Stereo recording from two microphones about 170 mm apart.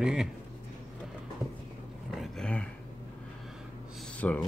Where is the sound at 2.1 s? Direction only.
Centre (ahead or behind).